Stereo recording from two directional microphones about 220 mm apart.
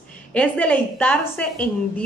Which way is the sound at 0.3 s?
5° left (ahead or behind).